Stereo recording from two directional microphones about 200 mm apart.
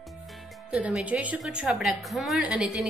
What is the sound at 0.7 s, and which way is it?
A woman's voice, 5° right (ahead or behind).